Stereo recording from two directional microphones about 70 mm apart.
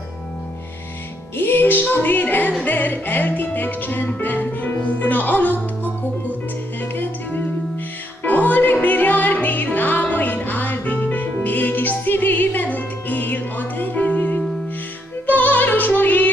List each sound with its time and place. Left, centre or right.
1.3 s music: left
6.8 s music: left